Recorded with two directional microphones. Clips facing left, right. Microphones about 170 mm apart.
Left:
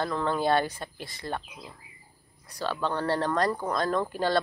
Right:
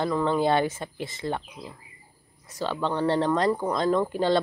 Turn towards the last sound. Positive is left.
turn(degrees=-20)  # may be behind; listen again after turning